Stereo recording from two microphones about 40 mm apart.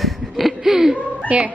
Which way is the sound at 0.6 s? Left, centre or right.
Centre.